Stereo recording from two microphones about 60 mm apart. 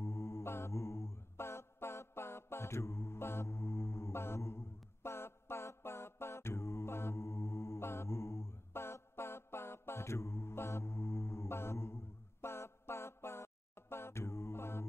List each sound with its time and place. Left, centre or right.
0.0 s mantra: left